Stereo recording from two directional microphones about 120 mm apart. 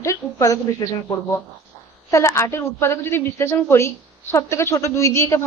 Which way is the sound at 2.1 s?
25° left (ahead or behind).